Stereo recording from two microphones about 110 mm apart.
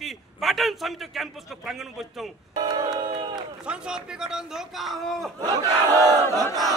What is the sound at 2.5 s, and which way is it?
Battle cry, 40° right (ahead or behind).